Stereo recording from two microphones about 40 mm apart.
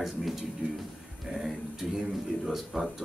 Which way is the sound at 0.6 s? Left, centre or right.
Right.